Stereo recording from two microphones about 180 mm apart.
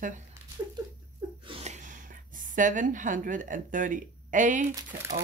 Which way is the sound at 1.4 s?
35° right (ahead or behind).